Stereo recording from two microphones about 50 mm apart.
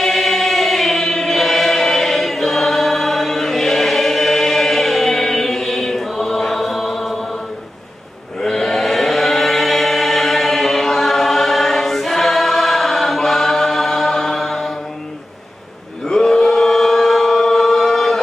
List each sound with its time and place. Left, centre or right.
0.0 s choir: centre
8.4 s chant: centre
16.1 s chant: centre